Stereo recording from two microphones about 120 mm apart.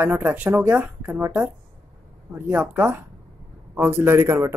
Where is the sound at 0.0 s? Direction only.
15° right (ahead or behind).